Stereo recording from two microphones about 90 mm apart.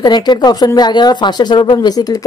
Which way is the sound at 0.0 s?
55° left (ahead or behind).